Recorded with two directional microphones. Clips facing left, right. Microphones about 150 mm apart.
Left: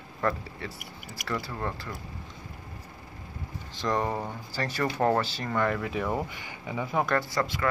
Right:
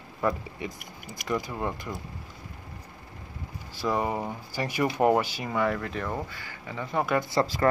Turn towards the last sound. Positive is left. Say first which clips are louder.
# right 4 dB
turn(degrees=-25)  # may be behind; listen again after turning